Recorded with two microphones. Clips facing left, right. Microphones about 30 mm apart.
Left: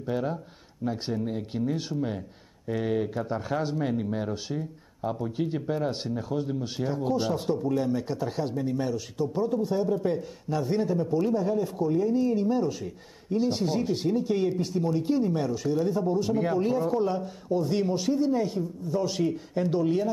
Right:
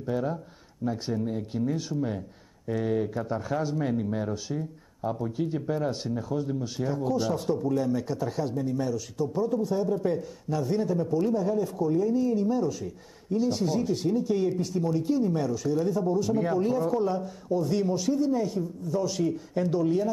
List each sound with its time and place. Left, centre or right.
0.0 s speech: left
3.7 s speech: centre
9.8 s speech: centre